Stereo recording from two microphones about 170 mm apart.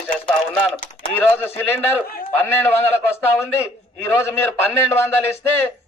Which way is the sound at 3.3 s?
15° left (ahead or behind).